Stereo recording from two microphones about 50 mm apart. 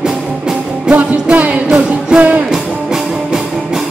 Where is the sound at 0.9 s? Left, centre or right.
Right.